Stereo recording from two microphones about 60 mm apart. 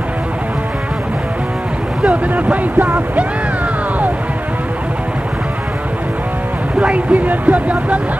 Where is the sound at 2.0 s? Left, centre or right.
Right.